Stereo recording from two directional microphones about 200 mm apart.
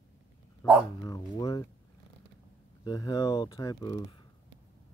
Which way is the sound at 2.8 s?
20° left (ahead or behind).